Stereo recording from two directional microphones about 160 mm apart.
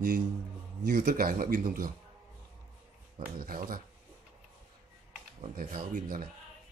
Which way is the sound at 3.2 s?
65° right (ahead or behind).